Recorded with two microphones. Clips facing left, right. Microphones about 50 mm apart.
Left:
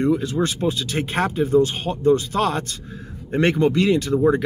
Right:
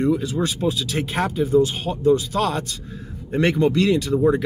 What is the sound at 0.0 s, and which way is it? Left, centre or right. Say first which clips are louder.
Speech: left 1 dB; centre.